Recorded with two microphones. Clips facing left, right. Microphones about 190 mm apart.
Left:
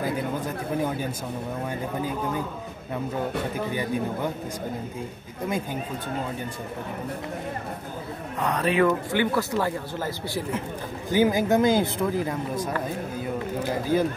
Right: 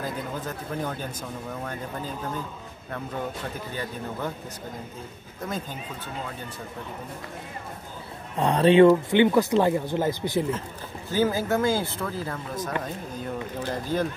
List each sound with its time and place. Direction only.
8.4 s speech: 30° right (ahead or behind)
11.1 s speech: 15° left (ahead or behind)